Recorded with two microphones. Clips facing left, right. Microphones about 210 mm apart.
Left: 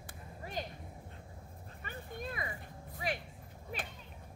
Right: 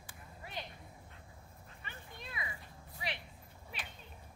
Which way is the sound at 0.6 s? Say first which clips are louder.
Left 5 dB; 45° left (ahead or behind).